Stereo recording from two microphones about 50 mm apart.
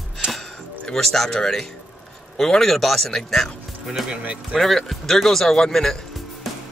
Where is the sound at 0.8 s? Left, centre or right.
Centre.